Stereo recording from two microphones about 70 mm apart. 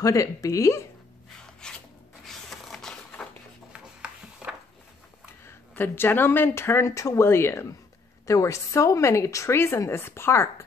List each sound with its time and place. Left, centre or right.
0.0 s speech: left
1.6 s filing: centre
2.2 s a sound: centre
3.2 s a sound: left
5.4 s speech: left
8.3 s speech: left